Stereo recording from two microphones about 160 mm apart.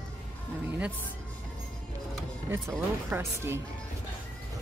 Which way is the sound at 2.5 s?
15° right (ahead or behind).